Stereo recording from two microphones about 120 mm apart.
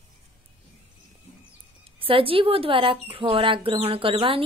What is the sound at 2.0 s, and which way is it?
Speech, 50° right (ahead or behind).